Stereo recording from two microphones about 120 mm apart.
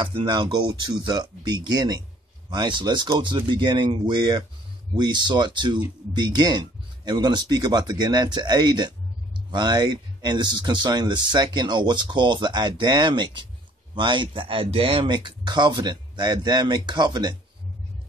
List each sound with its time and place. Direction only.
0.0 s speech: 40° right (ahead or behind)